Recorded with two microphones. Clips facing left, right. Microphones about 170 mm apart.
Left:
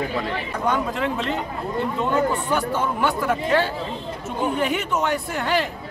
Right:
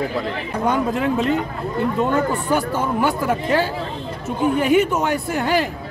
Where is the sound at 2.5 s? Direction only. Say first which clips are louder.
Right 3 dB; 10° right (ahead or behind).